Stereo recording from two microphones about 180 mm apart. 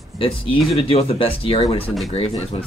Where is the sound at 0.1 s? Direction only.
Centre (ahead or behind).